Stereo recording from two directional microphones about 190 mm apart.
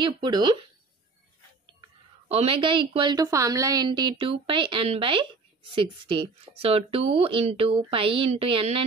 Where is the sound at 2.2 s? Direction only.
30° right (ahead or behind).